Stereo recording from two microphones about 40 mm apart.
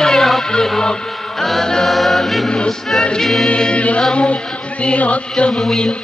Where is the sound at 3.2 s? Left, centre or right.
Centre.